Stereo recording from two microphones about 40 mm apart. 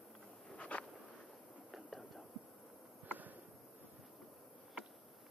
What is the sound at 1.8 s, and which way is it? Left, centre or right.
Whispering, centre.